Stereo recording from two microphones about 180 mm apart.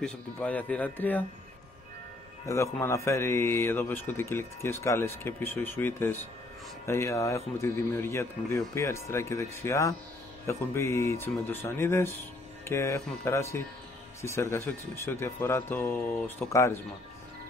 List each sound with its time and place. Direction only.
0.0 s speech: 5° left (ahead or behind)
2.4 s speech: 15° left (ahead or behind)